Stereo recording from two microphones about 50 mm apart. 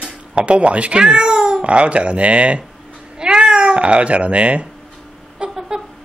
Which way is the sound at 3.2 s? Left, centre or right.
Centre.